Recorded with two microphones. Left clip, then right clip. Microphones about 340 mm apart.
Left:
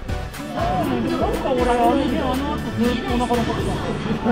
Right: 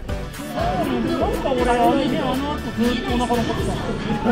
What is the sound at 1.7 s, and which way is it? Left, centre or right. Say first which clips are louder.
Speech: even; right.